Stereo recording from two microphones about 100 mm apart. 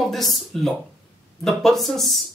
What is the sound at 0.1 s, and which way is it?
Speech, centre (ahead or behind).